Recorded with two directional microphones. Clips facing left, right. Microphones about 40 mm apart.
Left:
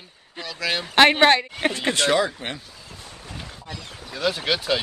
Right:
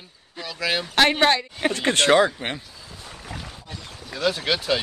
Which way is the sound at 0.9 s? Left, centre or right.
Left.